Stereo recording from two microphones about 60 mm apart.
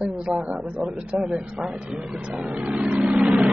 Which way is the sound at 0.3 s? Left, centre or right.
Centre.